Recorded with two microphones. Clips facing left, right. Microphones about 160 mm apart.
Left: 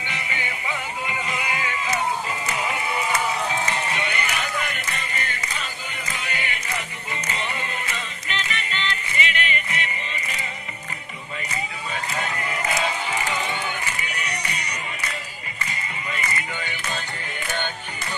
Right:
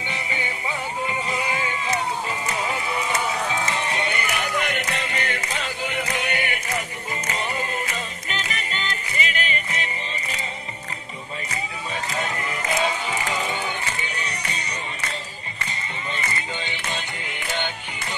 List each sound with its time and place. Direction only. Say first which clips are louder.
0.1 s music: right 2 dB; 30° right (ahead or behind)
3.6 s music: right 1 dB; 30° right (ahead or behind)
4.3 s music: right 3 dB; 65° right (ahead or behind)
7.9 s music: right 1 dB; 40° right (ahead or behind)
14.0 s music: even; 30° right (ahead or behind)
16.3 s music: even; 25° right (ahead or behind)